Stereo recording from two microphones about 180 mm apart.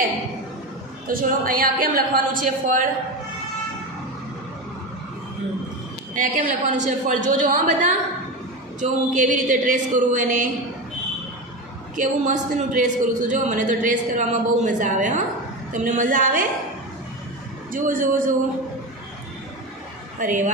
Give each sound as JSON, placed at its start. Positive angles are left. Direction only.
{"t": 1.0, "sound": "a man's voice", "side_deg": -50}
{"t": 6.1, "sound": "a man's voice", "side_deg": -45}
{"t": 9.1, "sound": "a man's voice", "side_deg": -45}
{"t": 12.0, "sound": "a man's voice", "side_deg": -45}
{"t": 17.7, "sound": "a man's voice", "side_deg": -50}
{"t": 20.2, "sound": "a man's voice", "side_deg": -45}